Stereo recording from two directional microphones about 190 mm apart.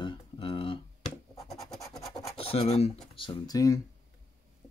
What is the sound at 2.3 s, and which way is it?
Speech, 30° left (ahead or behind).